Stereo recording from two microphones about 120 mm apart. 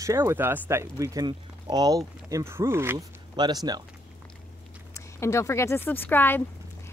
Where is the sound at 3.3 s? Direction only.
35° right (ahead or behind).